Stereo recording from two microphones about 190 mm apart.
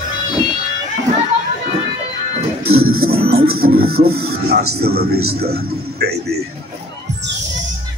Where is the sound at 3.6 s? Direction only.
50° right (ahead or behind).